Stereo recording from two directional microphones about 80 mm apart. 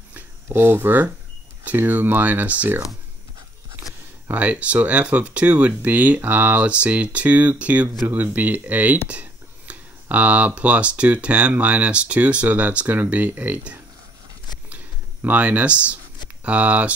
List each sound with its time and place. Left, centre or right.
0.5 s speech: right
3.8 s a sound: right
4.3 s speech: centre
15.2 s speech: centre